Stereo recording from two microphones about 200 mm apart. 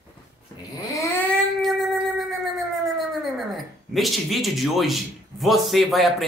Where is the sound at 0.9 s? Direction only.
10° left (ahead or behind).